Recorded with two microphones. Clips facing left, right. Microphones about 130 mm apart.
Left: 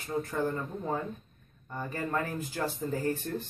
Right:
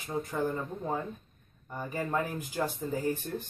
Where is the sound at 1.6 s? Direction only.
10° right (ahead or behind).